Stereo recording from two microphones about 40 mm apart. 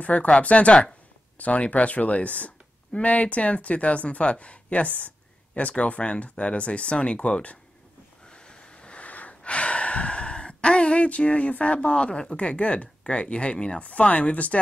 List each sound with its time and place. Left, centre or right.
0.0 s speech: left
8.3 s a sound: left
9.0 s gasp: left
11.1 s speech: left